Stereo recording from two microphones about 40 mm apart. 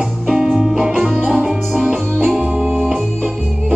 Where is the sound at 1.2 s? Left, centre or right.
Right.